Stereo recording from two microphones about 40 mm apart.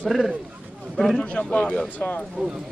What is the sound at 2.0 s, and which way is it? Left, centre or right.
Speech, left.